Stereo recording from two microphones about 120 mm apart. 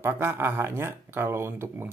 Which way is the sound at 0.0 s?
20° right (ahead or behind).